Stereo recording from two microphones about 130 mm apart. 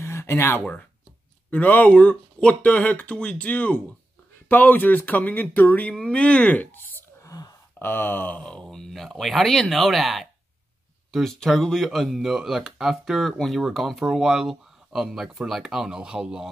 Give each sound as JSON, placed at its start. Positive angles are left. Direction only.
{"t": 0.0, "sound": "speech", "side_deg": 20}